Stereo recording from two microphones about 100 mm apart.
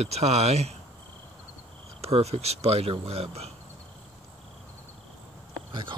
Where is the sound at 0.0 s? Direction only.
90° right.